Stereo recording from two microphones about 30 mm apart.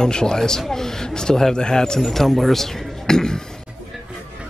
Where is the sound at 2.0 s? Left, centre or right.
Centre; by 3.4 s left.